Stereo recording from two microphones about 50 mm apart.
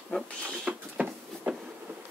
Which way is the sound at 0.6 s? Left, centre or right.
Right.